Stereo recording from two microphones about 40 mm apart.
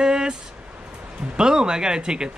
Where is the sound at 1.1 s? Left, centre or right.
Right.